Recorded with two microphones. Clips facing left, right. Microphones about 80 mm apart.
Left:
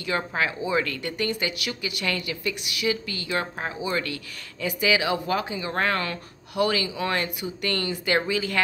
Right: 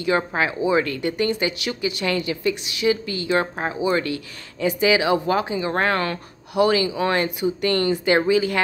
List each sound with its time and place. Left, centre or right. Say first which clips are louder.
0.0 s speech: right 5 dB; right
6.5 s speech: right 6 dB; right